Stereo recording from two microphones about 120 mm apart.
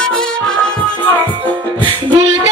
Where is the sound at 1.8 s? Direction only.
35° right (ahead or behind).